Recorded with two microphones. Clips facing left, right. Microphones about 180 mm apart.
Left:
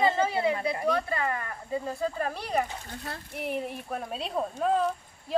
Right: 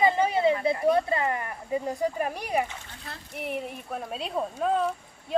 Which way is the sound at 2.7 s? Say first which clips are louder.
Left 4 dB; 45° left (ahead or behind).